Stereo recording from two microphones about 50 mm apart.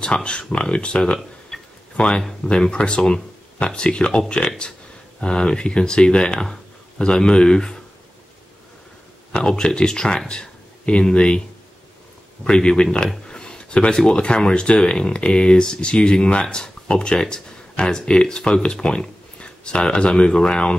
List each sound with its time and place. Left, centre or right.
0.0 s speech: centre
1.5 s tick-tock: centre
2.0 s speech: centre
9.3 s speech: centre
12.4 s speech: centre